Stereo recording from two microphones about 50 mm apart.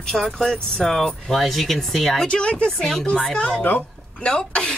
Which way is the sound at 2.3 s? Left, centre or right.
Centre.